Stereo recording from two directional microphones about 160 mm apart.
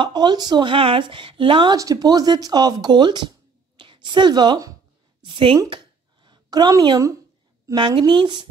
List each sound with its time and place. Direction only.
0.0 s a woman's voice: 25° right (ahead or behind)
5.6 s a sound: 30° right (ahead or behind)
7.6 s speech: 30° right (ahead or behind)